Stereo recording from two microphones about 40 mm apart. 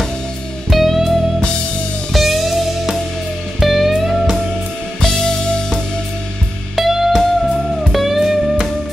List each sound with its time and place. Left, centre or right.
0.7 s music: centre
5.0 s music: centre
6.7 s music: centre